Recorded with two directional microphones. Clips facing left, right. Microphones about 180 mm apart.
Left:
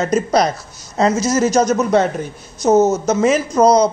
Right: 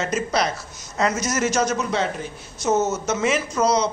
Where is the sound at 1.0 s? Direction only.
30° left (ahead or behind).